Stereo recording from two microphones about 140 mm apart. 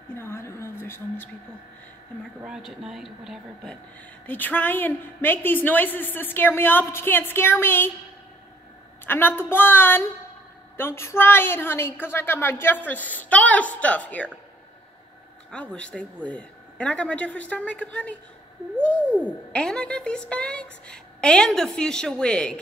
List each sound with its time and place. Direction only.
0.2 s a sound: 20° left (ahead or behind)
2.4 s speech: 5° right (ahead or behind)
4.3 s a woman's voice: 10° left (ahead or behind)
9.0 s a woman's voice: 15° left (ahead or behind)
15.5 s a woman's voice: 10° left (ahead or behind)
19.5 s a woman's voice: 5° left (ahead or behind)